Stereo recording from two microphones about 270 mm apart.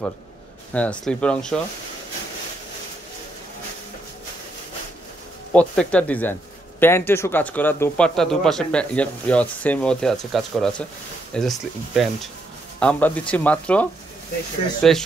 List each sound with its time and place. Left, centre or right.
0.7 s a man's voice: centre
5.5 s a man's voice: centre